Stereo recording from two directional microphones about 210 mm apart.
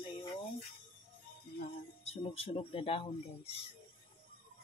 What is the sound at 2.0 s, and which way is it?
Speech, 30° left (ahead or behind).